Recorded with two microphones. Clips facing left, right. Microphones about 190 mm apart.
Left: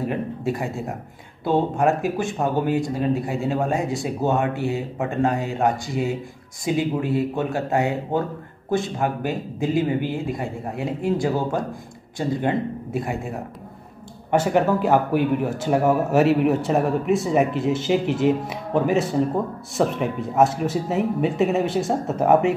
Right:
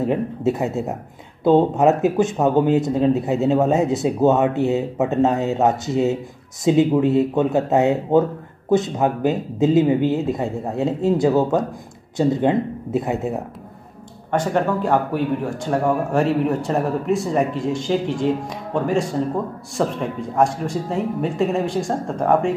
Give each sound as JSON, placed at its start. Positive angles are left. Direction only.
{"t": 0.0, "sound": "speech", "side_deg": -20}
{"t": 14.3, "sound": "speech", "side_deg": 10}